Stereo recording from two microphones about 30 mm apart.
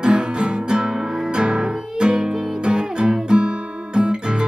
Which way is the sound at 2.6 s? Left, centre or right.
Right.